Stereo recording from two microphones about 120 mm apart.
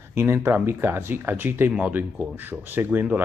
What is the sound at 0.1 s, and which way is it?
Speech, 20° right (ahead or behind).